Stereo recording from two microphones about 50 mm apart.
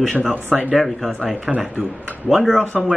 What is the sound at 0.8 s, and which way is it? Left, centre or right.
Speech, centre.